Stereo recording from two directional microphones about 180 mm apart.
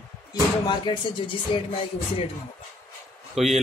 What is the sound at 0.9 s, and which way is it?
Speech, 25° left (ahead or behind).